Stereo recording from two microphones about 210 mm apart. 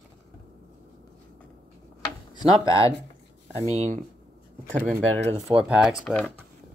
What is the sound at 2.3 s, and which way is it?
Speech, 15° left (ahead or behind).